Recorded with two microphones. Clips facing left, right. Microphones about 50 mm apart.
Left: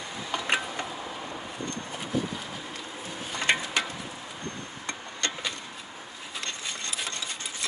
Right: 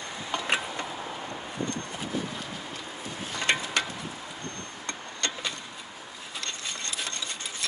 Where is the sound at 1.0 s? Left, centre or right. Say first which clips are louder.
Even; centre.